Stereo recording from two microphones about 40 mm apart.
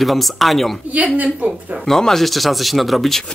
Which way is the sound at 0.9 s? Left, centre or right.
Right.